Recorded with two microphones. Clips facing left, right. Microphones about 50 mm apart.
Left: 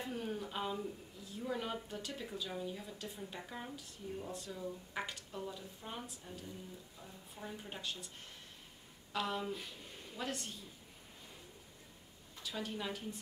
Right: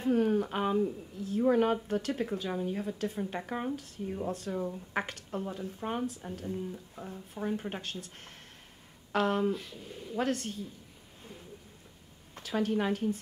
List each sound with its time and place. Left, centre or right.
0.0 s a woman's voice: right
12.4 s a woman's voice: right